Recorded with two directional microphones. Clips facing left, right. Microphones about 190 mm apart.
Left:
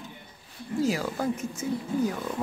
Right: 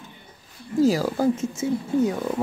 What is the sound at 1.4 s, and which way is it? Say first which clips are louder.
Speech: right 5 dB; 25° right (ahead or behind).